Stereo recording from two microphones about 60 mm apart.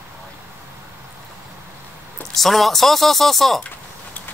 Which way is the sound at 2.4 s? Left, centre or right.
Centre.